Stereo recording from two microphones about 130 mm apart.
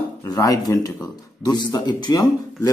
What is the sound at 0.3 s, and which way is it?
Speech, 30° left (ahead or behind).